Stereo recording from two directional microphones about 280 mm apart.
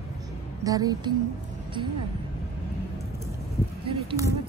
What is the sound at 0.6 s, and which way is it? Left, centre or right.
Speech, centre.